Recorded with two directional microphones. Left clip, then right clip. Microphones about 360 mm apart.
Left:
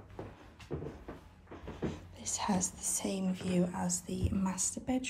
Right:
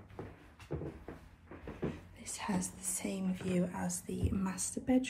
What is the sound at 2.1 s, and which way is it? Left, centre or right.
Speech, centre.